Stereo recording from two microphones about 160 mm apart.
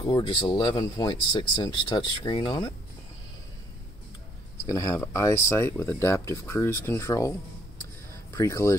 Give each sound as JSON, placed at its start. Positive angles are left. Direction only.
{"t": 0.0, "sound": "speech", "side_deg": 30}
{"t": 4.6, "sound": "speech", "side_deg": 20}